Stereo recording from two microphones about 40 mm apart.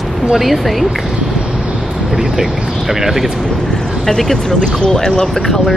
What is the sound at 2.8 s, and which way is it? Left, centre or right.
Speech, centre.